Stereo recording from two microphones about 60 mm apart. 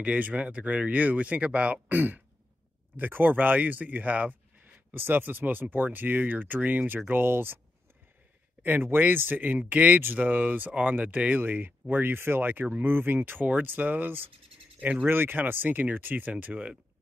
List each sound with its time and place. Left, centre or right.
0.0 s speech: right
8.6 s speech: right
14.8 s speech: right
15.0 s speech: right